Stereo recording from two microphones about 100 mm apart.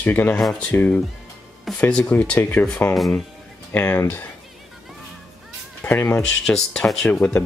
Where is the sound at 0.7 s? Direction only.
20° left (ahead or behind).